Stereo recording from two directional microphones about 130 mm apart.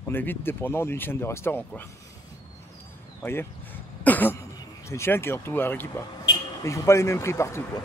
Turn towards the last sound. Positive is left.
turn(degrees=20)  # may be behind; listen again after turning